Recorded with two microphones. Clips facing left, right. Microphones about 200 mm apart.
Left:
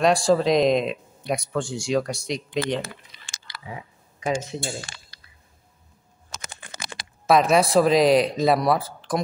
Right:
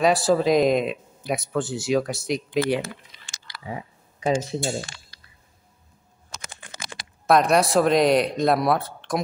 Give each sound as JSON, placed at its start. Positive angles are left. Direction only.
{"t": 0.0, "sound": "speech", "side_deg": -5}
{"t": 4.2, "sound": "speech", "side_deg": -35}
{"t": 7.2, "sound": "speech", "side_deg": 0}